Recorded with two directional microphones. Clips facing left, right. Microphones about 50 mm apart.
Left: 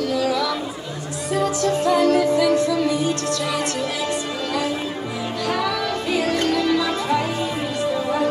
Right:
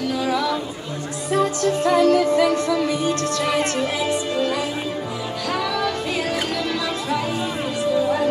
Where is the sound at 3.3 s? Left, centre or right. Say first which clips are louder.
Right 2 dB; right.